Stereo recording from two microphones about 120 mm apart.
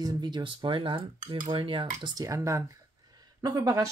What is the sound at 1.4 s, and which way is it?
Cutlery, 45° right (ahead or behind).